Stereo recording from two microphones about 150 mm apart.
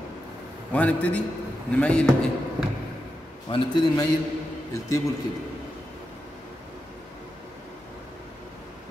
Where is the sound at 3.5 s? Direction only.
35° left (ahead or behind).